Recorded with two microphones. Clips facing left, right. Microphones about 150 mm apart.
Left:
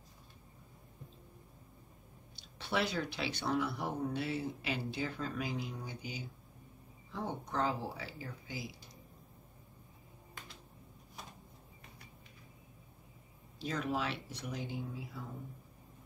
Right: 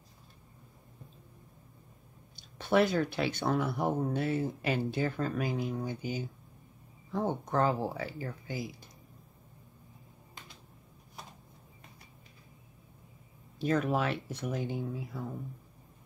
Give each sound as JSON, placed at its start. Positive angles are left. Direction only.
{"t": 2.3, "sound": "speech", "side_deg": -50}
{"t": 13.6, "sound": "speech", "side_deg": -55}